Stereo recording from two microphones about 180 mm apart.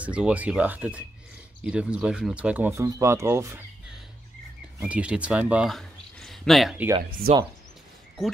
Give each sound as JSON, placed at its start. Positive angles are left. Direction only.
{"t": 0.0, "sound": "speech", "side_deg": -5}
{"t": 4.8, "sound": "speech", "side_deg": -5}
{"t": 7.2, "sound": "speech", "side_deg": -55}